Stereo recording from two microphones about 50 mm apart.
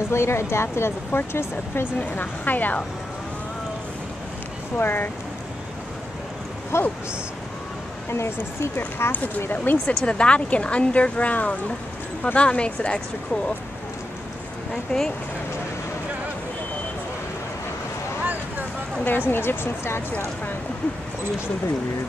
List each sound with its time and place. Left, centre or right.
0.1 s speech: left
4.7 s speech: left
6.7 s speech: left
8.7 s speech: left
10.0 s speech: left
14.7 s speech: centre
19.0 s speech: left